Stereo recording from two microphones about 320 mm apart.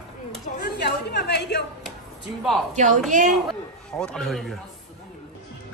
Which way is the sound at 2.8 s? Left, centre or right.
Right.